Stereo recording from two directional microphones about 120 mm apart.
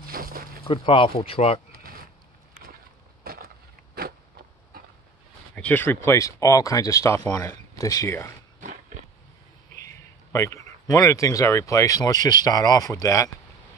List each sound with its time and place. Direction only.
0.7 s speech: 45° left (ahead or behind)
5.6 s speech: 15° left (ahead or behind)
9.8 s speech: 25° left (ahead or behind)